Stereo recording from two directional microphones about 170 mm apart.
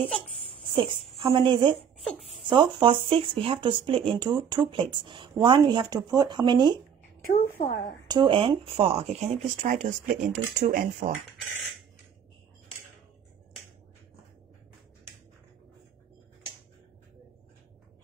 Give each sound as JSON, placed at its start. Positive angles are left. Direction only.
{"t": 0.6, "sound": "speech", "side_deg": -30}
{"t": 7.2, "sound": "a woman's voice", "side_deg": 55}
{"t": 8.1, "sound": "speech", "side_deg": -30}